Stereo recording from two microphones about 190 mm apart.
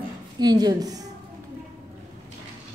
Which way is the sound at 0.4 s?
20° right (ahead or behind).